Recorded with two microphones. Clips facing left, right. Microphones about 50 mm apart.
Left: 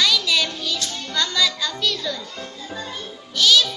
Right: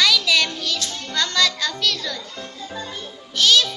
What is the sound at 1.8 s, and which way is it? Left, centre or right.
Music, right.